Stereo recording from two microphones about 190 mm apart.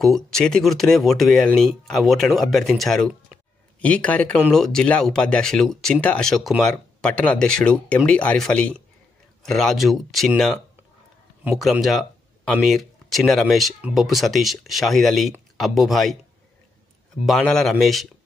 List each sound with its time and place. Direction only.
0.0 s a man's voice: centre (ahead or behind)
17.3 s speech: 5° left (ahead or behind)